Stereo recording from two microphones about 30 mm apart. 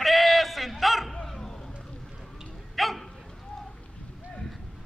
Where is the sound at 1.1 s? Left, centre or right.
Centre.